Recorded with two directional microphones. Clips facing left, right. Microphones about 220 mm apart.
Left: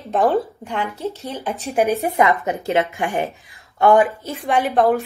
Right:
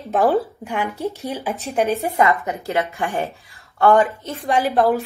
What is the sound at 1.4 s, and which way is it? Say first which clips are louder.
Speech: even; centre (ahead or behind).